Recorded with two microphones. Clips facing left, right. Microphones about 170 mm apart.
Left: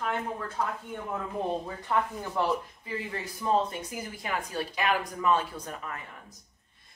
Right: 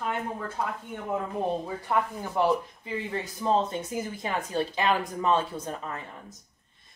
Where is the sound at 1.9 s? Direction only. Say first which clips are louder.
Right 1 dB; 15° right (ahead or behind).